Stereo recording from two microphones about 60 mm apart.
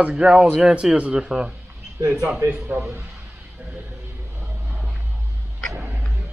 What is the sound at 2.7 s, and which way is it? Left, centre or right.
Speech, right.